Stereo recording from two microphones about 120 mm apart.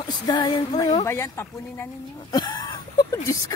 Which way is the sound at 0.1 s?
40° left (ahead or behind).